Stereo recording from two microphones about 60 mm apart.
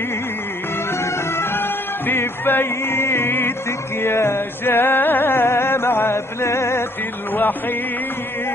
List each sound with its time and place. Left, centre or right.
0.9 s music: left
7.3 s music: left